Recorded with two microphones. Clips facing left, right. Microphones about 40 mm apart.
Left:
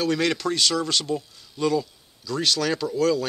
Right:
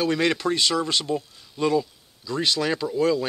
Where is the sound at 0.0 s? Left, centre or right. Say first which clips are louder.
Right 1 dB; centre.